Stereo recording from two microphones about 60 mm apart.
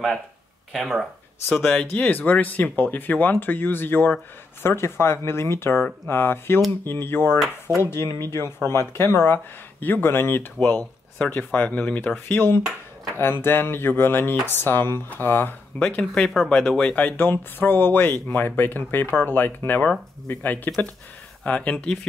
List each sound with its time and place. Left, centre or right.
0.7 s speech: centre
1.5 s speech: centre
1.9 s speech: left
15.8 s speech: left
16.2 s speech: centre
16.7 s speech: left